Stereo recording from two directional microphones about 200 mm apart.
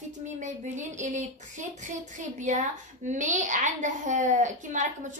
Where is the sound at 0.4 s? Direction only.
40° right (ahead or behind).